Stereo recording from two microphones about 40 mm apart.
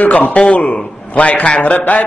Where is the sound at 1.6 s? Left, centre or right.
Left.